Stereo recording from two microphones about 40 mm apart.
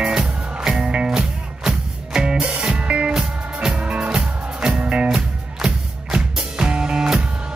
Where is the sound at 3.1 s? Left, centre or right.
Centre.